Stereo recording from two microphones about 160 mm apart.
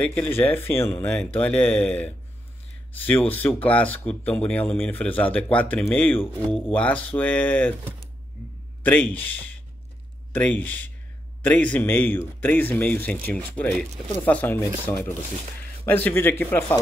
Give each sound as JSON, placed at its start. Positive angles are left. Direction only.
{"t": 0.0, "sound": "speech", "side_deg": 10}